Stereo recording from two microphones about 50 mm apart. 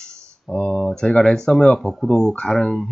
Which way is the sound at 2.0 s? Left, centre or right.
Centre.